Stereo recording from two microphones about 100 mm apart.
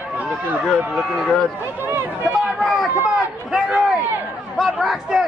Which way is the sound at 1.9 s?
20° right (ahead or behind).